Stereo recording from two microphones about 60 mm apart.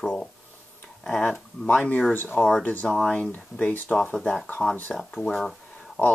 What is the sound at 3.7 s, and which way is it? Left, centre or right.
Speech, left.